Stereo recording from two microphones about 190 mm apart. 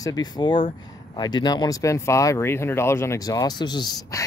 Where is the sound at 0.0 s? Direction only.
20° left (ahead or behind).